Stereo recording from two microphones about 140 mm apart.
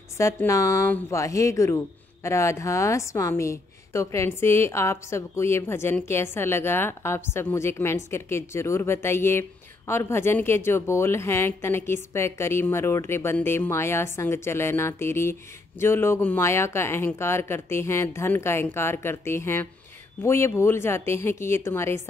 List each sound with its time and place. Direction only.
0.2 s a woman's voice: 20° left (ahead or behind)